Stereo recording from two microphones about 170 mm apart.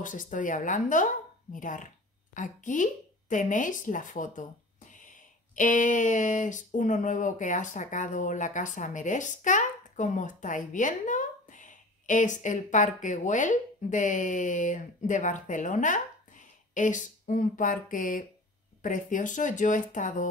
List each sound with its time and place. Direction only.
0.0 s a woman's voice: 50° left (ahead or behind)